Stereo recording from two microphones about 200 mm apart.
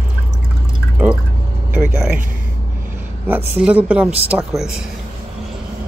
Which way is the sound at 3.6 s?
5° right (ahead or behind).